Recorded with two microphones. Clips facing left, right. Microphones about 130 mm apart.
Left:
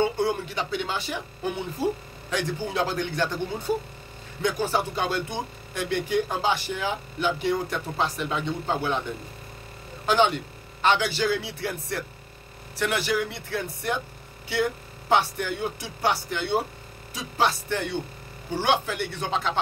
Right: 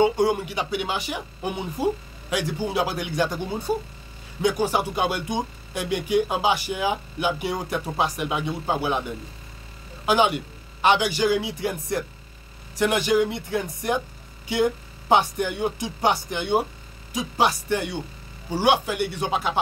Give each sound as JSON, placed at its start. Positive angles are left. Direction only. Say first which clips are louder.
{"t": 0.0, "sound": "speech", "louder": "right 4 dB", "side_deg": -15}
{"t": 10.0, "sound": "speech", "louder": "right 1 dB", "side_deg": -10}